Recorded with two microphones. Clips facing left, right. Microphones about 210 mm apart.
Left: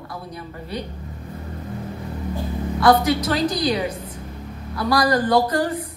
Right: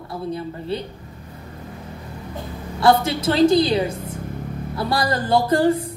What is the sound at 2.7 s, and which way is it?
A woman's voice, 25° right (ahead or behind).